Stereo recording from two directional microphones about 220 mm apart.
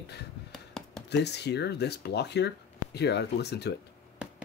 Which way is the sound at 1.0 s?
50° left (ahead or behind).